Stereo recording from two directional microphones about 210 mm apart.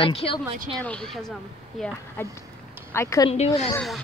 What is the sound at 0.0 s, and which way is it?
Speech, 25° left (ahead or behind).